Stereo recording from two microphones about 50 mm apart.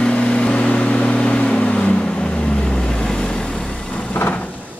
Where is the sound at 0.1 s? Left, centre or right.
Left.